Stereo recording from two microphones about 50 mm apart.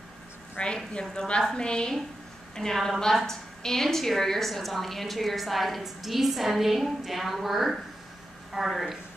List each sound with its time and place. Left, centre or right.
0.6 s a woman's voice: left; by 8.9 s centre